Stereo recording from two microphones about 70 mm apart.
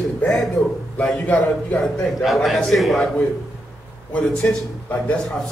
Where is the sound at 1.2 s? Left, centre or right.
Centre.